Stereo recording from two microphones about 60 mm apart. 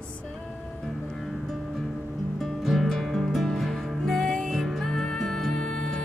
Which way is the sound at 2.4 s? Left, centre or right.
Centre.